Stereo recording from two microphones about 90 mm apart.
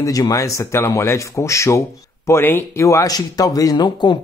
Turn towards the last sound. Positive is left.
turn(degrees=55)  # may be behind; listen again after turning